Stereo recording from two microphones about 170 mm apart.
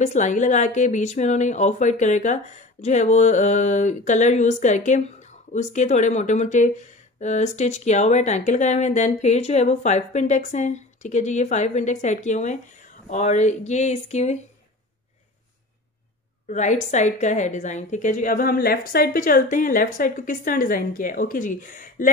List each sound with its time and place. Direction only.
0.0 s speech: 45° left (ahead or behind)
16.4 s speech: 45° left (ahead or behind)